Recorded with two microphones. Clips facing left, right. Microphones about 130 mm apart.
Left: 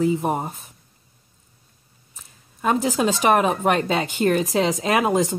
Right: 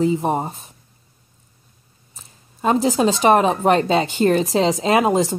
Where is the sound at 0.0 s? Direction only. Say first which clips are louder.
Right 2 dB; 25° right (ahead or behind).